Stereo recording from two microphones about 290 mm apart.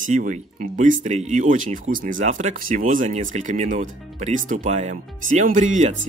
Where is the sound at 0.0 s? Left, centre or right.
Right.